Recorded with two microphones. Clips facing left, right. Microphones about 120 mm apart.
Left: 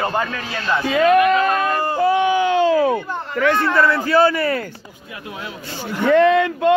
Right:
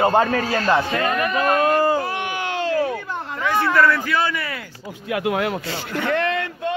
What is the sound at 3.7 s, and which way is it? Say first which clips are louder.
Speech: left 2 dB; 25° left (ahead or behind).